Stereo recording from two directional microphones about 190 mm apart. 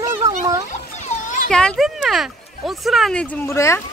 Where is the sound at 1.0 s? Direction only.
40° left (ahead or behind).